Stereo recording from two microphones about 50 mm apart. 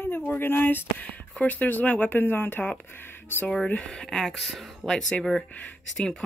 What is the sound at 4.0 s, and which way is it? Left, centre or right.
Speech, centre.